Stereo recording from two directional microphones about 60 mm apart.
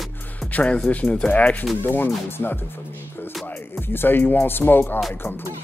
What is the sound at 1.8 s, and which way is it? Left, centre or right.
Speech, left.